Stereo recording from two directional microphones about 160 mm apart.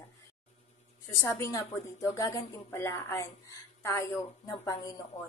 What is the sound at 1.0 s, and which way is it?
A woman's voice, 15° left (ahead or behind).